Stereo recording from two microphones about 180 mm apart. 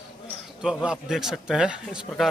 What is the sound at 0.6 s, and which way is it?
A man's voice, 5° right (ahead or behind).